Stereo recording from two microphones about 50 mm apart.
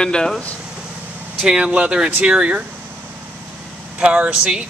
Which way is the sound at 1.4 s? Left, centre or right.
Centre.